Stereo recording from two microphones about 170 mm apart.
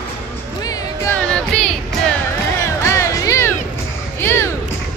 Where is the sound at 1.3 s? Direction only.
5° left (ahead or behind).